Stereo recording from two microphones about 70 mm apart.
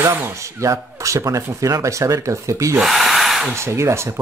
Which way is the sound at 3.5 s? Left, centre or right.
Right.